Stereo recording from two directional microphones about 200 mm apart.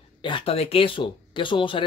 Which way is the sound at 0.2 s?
25° left (ahead or behind).